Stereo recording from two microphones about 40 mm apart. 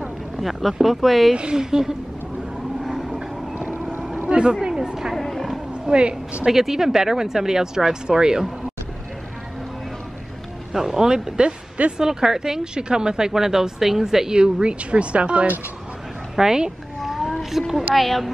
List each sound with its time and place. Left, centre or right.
0.4 s a woman's voice: centre
1.3 s a woman's voice: right
1.6 s speech: centre
2.8 s vehicle: centre
4.3 s speech: right
5.1 s a woman's voice: centre
5.9 s a woman's voice: right
6.5 s speech: centre
10.7 s speech: centre
12.0 s speech: centre; by 15.4 s right
16.3 s speech: centre
17.0 s a sound: centre
17.4 s a woman's voice: centre